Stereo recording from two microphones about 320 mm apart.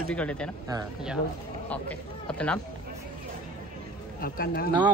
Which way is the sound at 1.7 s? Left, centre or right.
Centre.